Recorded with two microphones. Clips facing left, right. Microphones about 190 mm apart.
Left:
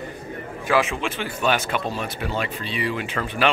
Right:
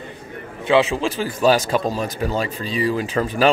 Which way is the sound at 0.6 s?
35° right (ahead or behind).